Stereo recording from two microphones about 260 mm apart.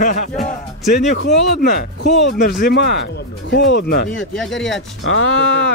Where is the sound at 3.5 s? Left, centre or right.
Left.